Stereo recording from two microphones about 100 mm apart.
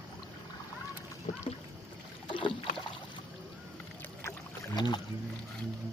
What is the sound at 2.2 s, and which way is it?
Boat, 55° left (ahead or behind).